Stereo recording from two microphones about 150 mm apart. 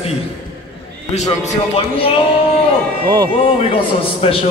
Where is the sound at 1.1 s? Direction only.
45° left (ahead or behind).